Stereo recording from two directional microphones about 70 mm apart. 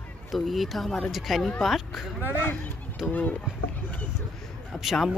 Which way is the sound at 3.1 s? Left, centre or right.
Left.